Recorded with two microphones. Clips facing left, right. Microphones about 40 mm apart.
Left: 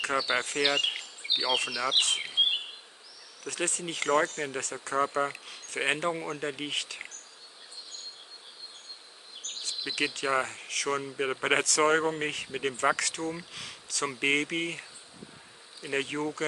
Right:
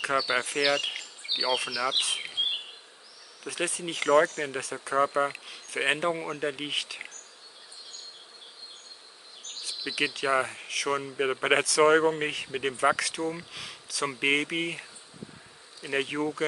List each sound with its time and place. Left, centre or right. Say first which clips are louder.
0.1 s speech: right 3 dB; centre
0.6 s speech: right 2 dB; centre
0.8 s bee: left 3 dB; centre
1.4 s speech: right 2 dB; centre
3.4 s speech: right 1 dB; centre
9.8 s speech: right 2 dB; centre